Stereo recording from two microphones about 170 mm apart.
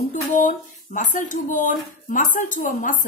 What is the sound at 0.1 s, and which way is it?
Speech, 45° left (ahead or behind).